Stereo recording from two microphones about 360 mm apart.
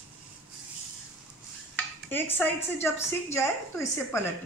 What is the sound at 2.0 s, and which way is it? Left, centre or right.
A woman's voice, centre.